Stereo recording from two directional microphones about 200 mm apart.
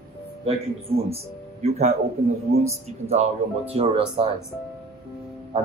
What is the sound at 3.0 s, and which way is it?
Speech, 30° right (ahead or behind).